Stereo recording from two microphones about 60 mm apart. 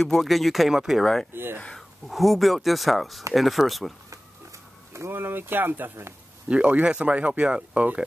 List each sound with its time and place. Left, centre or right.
0.0 s speech: centre
1.3 s speech: right
1.8 s speech: centre
4.9 s speech: right
6.5 s speech: centre